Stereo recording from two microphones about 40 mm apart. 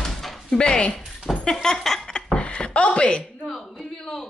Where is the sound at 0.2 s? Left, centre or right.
Centre.